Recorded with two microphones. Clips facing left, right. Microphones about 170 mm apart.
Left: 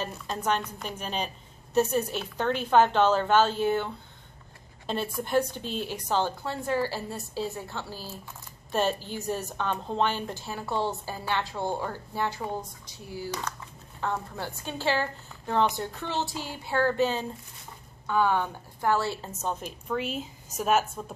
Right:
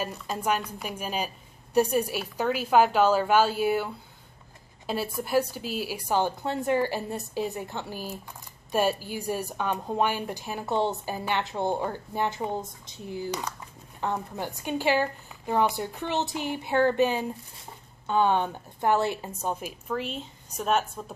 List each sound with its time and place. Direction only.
0.0 s a woman's voice: 10° right (ahead or behind)